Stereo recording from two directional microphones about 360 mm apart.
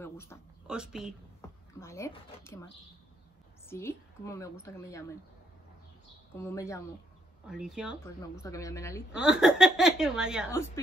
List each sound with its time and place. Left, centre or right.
0.0 s a woman's voice: centre
3.6 s a woman's voice: centre
6.3 s a woman's voice: centre
8.4 s a woman's voice: centre
9.1 s speech: centre